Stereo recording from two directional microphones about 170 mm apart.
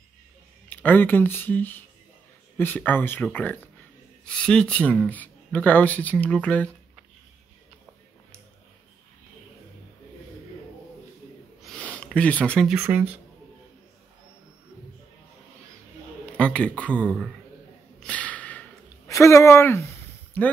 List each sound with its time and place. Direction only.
0.7 s speech: 10° left (ahead or behind)
11.6 s a sound: 5° left (ahead or behind)
12.7 s speech: 10° right (ahead or behind)
16.3 s speech: 5° left (ahead or behind)
17.0 s speech: 5° right (ahead or behind)
18.0 s a sound: 10° left (ahead or behind)
19.0 s speech: 15° left (ahead or behind)